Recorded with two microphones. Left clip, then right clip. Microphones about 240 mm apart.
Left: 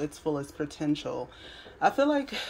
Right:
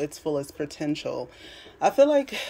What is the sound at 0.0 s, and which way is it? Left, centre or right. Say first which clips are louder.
A woman's voice: right 3 dB; centre.